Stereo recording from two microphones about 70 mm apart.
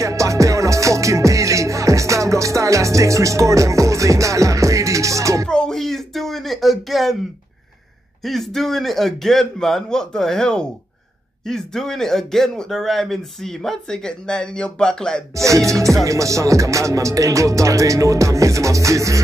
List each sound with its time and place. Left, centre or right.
0.0 s music: right
5.5 s a sound: centre
8.2 s a man's voice: centre
15.3 s music: right